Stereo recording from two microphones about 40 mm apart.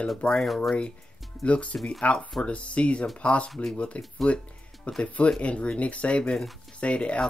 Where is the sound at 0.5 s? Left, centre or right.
Centre.